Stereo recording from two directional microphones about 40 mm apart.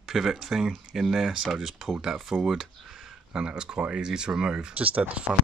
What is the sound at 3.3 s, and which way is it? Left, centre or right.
Speech, right.